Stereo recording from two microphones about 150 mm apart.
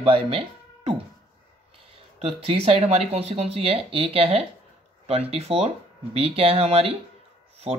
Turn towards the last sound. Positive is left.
turn(degrees=-40)  # may be behind; listen again after turning